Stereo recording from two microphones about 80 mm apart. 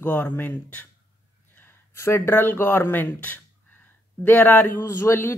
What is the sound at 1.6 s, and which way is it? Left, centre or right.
Speech, left.